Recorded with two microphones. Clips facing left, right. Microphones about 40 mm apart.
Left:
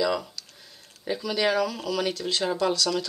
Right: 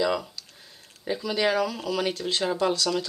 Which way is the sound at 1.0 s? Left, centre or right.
Centre.